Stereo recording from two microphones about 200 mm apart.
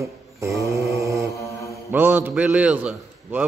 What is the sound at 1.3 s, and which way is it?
Mantra, 15° left (ahead or behind).